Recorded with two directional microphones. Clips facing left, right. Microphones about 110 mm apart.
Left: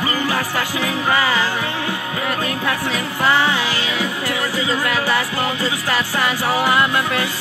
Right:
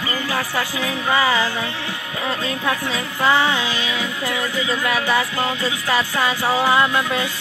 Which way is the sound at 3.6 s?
80° left.